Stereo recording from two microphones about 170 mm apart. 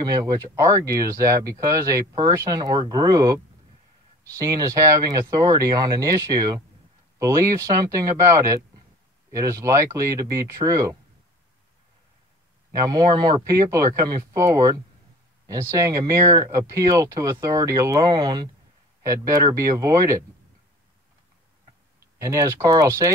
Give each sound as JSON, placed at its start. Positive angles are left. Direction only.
{"t": 0.0, "sound": "speech", "side_deg": -20}
{"t": 12.8, "sound": "speech", "side_deg": -25}
{"t": 22.2, "sound": "speech", "side_deg": -20}